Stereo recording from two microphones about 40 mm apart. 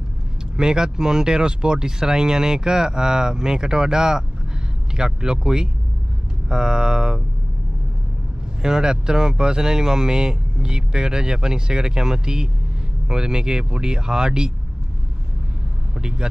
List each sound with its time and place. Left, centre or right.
0.6 s speech: centre
8.6 s speech: centre
16.0 s speech: centre